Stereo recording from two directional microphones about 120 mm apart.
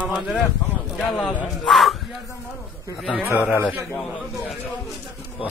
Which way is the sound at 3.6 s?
20° right (ahead or behind).